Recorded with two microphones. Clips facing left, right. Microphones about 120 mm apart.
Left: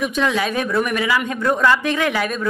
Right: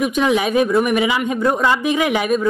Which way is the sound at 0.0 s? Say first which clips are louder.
Right 3 dB; 15° right (ahead or behind).